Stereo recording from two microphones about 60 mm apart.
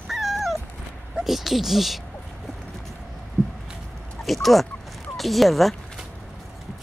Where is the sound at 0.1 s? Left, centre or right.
Centre.